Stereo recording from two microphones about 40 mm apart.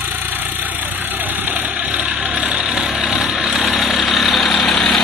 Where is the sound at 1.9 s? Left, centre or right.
Right.